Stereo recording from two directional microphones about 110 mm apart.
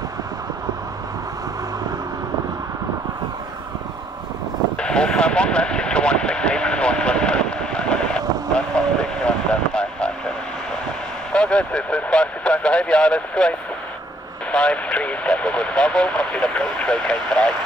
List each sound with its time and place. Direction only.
4.7 s vehicle: 10° left (ahead or behind)
11.3 s speech: 10° left (ahead or behind)